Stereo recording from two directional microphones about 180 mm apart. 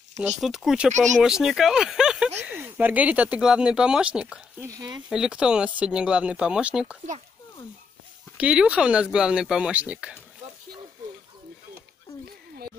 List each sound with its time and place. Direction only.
0.4 s speech: centre (ahead or behind)
4.6 s speech: 20° right (ahead or behind)
5.1 s speech: 5° right (ahead or behind)
8.4 s speech: 5° right (ahead or behind)